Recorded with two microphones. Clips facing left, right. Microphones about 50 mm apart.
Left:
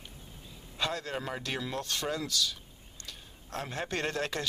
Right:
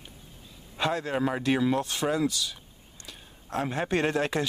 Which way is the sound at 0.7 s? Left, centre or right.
Centre.